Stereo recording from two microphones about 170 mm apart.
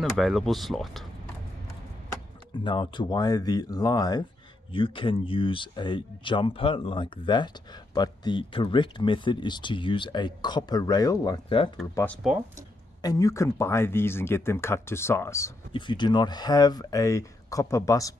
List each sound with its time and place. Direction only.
0.2 s speech: centre (ahead or behind)
2.6 s speech: 30° left (ahead or behind)
11.9 s speech: 10° left (ahead or behind)
15.7 s speech: 25° left (ahead or behind)